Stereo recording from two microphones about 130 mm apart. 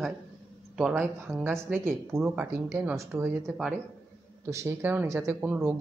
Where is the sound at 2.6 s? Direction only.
20° right (ahead or behind).